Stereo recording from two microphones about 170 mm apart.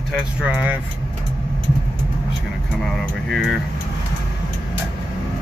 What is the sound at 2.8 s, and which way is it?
Speech, 5° left (ahead or behind).